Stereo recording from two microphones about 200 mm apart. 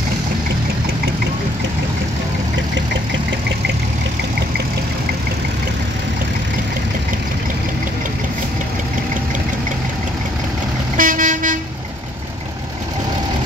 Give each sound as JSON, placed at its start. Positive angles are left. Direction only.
{"t": 11.0, "sound": "vehicle", "side_deg": -40}